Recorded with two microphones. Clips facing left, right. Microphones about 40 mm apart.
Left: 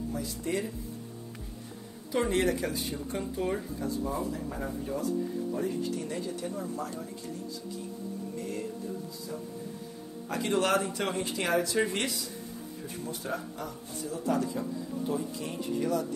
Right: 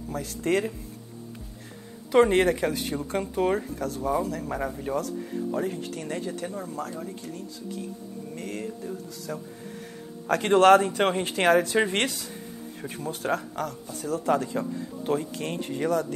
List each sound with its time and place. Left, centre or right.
0.1 s speech: right
2.1 s speech: right
8.4 s speech: right
10.2 s speech: right
14.3 s speech: right